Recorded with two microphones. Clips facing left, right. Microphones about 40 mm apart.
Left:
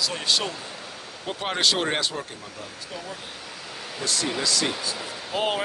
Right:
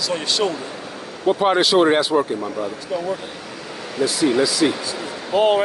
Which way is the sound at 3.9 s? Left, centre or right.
Centre.